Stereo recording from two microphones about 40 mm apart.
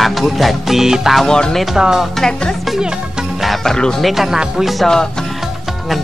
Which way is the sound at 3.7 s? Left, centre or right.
Centre.